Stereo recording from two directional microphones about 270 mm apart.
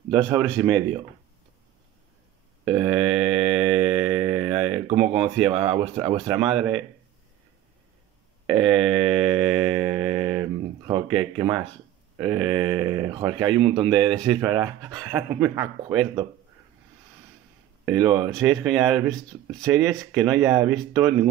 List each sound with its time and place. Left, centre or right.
0.1 s speech: centre
2.9 s mantra: centre
5.2 s speech: centre
5.5 s speech: centre
6.1 s speech: centre
8.5 s mantra: centre
10.2 s a sound: centre
12.2 s speech: centre
17.8 s speech: centre